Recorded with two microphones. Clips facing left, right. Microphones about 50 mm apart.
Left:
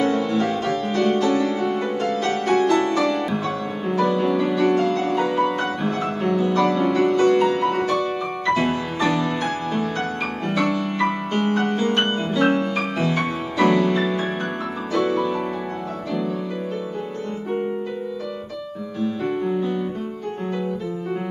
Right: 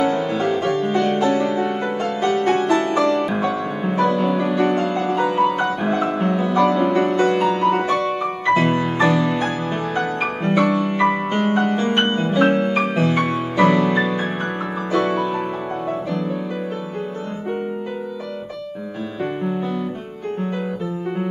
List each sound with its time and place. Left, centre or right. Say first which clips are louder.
0.0 s music: right 1 dB; centre
1.0 s music: left 3 dB; centre
3.0 s music: right 3 dB; centre
5.5 s music: right 3 dB; centre
7.9 s music: right 2 dB; right
8.2 s music: right 3 dB; centre
12.5 s music: right 4 dB; right